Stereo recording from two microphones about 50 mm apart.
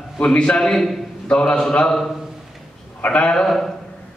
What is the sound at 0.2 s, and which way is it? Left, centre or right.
Speech, left.